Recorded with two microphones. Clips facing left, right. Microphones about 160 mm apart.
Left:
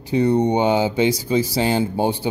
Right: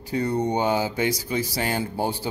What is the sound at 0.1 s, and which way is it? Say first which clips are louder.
Speech: left 7 dB; 20° left (ahead or behind).